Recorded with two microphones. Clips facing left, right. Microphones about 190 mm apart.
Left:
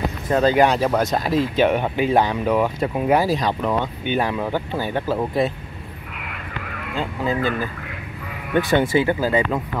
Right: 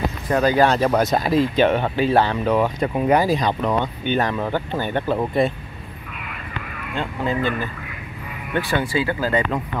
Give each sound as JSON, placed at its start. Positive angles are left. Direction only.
{"t": 0.3, "sound": "speech", "side_deg": 25}
{"t": 0.7, "sound": "speech", "side_deg": 5}
{"t": 7.0, "sound": "speech", "side_deg": 5}
{"t": 8.5, "sound": "speech", "side_deg": 20}